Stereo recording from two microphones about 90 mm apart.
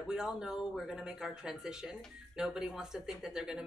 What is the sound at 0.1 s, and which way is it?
Speech, 5° right (ahead or behind).